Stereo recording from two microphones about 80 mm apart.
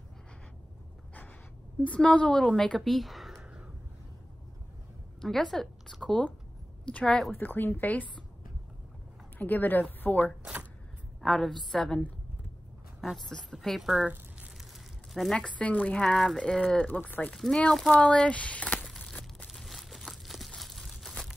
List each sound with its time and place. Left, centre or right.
1.8 s speech: centre
5.2 s a woman's voice: centre
9.4 s a woman's voice: left
10.4 s a sound: centre
11.1 s a woman's voice: centre
13.0 s a woman's voice: centre
15.3 s speech: centre
17.4 s speech: centre
18.9 s crumpling: centre